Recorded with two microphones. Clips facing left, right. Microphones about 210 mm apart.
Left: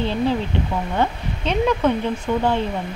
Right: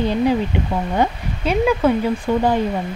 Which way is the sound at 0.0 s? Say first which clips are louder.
Right 3 dB; 15° right (ahead or behind).